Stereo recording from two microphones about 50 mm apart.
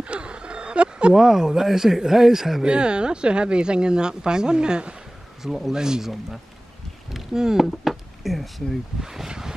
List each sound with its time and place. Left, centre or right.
0.0 s a sound: right
1.1 s a man's voice: centre
2.7 s speech: centre
5.4 s a man's voice: centre
7.1 s a sound: centre
9.0 s speech: centre